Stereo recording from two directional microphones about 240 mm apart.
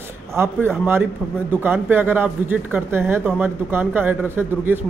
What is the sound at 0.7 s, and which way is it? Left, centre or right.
Speech, centre.